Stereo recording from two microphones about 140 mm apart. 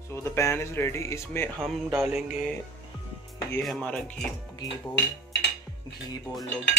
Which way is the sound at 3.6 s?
Centre (ahead or behind).